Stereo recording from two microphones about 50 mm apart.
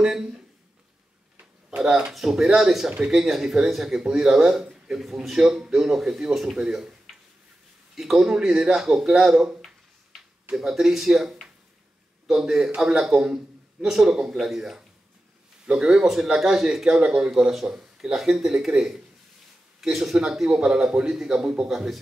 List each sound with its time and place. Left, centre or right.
0.0 s speech: centre
1.4 s a sound: centre
2.1 s speech: centre
10.5 s speech: centre
19.8 s speech: centre